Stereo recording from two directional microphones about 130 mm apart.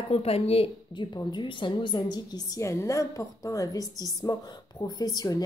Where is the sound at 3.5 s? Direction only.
25° left (ahead or behind).